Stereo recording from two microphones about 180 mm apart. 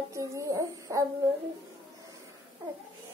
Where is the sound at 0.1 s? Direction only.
15° right (ahead or behind).